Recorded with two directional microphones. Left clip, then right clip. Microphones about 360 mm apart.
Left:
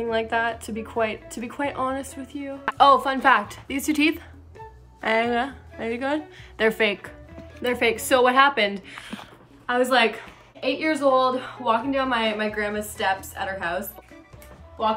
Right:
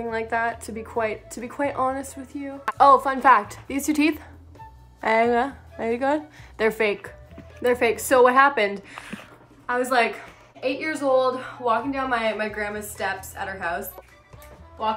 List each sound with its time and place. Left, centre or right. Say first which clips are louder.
0.0 s a woman's voice: left 1 dB; centre